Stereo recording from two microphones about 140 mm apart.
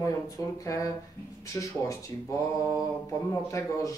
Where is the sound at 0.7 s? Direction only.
25° left (ahead or behind).